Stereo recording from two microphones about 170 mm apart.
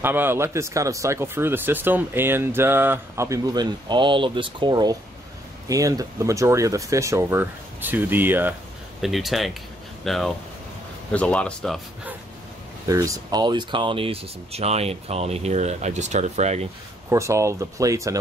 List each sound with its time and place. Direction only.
0.0 s speech: 10° right (ahead or behind)
9.0 s a man's voice: centre (ahead or behind)
12.8 s speech: 20° right (ahead or behind); by 16.6 s 40° right (ahead or behind)
17.1 s speech: 15° right (ahead or behind)